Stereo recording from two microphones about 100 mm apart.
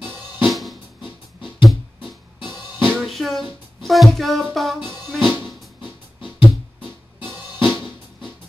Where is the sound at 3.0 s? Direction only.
Centre (ahead or behind).